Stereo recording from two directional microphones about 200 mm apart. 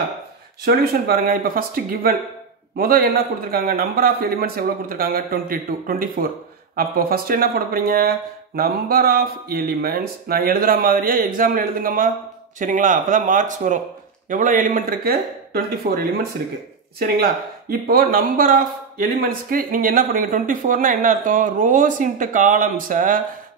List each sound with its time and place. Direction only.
0.7 s speech: 50° right (ahead or behind)